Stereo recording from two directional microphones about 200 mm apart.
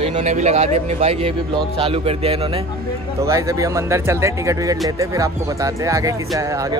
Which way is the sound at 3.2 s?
15° right (ahead or behind).